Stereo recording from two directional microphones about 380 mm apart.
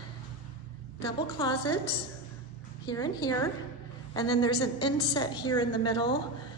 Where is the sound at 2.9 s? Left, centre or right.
Centre.